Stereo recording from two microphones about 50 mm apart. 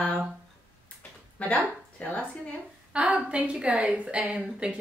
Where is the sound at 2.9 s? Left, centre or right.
Right.